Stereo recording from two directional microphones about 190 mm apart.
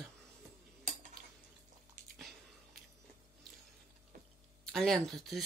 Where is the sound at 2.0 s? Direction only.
40° right (ahead or behind).